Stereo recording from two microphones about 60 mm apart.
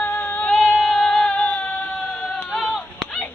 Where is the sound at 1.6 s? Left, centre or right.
Left.